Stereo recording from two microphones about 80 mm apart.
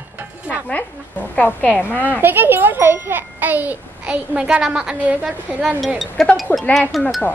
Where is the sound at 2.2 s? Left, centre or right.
Right; by 5.7 s centre.